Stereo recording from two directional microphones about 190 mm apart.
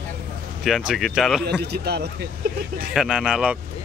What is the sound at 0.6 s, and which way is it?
Speech, centre (ahead or behind).